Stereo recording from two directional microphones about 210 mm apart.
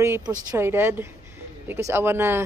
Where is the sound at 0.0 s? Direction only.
10° right (ahead or behind).